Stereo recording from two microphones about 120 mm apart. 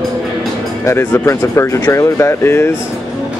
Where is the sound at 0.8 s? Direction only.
25° left (ahead or behind).